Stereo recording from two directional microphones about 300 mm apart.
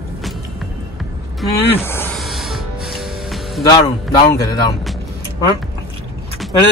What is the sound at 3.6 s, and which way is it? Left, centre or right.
Speech, centre.